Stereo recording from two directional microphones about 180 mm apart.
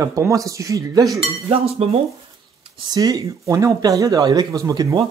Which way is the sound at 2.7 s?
20° right (ahead or behind).